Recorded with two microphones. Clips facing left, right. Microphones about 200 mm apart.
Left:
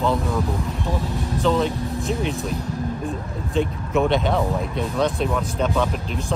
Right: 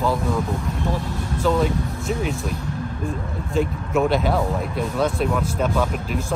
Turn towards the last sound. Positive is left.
turn(degrees=0)  # may be behind; listen again after turning